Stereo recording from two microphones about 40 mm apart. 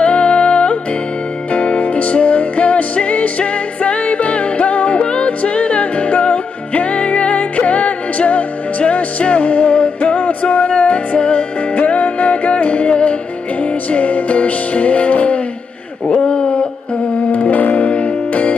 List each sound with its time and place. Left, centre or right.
0.0 s music: left
16.2 s a sound: left
17.3 s music: left